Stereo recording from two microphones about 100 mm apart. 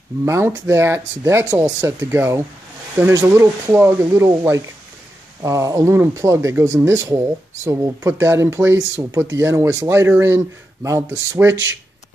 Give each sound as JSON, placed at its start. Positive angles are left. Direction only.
{"t": 0.2, "sound": "speech", "side_deg": -25}